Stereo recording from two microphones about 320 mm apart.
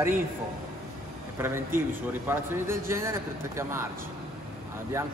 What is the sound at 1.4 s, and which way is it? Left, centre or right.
A man's voice, centre.